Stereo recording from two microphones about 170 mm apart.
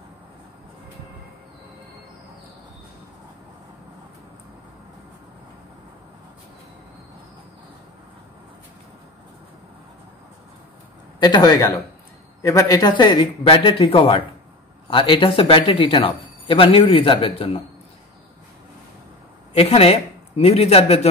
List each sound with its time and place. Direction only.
11.1 s a man's voice: 25° left (ahead or behind)
19.5 s a man's voice: 35° left (ahead or behind)